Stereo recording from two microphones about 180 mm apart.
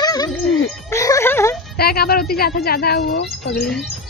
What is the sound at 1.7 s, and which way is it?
Speech, 60° left (ahead or behind).